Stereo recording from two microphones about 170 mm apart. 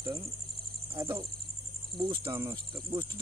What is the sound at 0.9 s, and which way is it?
Speech, 25° right (ahead or behind).